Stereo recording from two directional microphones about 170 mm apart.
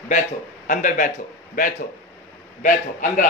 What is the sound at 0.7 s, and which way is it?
Speech, 50° left (ahead or behind).